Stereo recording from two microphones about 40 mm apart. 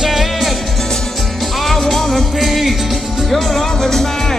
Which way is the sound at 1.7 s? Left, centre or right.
Centre.